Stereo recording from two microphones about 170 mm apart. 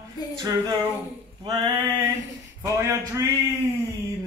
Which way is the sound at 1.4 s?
25° right (ahead or behind).